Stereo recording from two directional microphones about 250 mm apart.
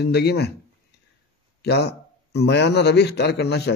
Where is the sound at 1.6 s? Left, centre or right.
Left.